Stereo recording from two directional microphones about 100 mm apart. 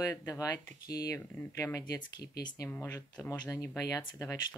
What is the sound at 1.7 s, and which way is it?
Speech, 40° left (ahead or behind).